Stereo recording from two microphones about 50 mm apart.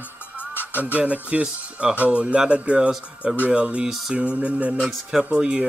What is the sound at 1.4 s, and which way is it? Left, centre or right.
Music, centre.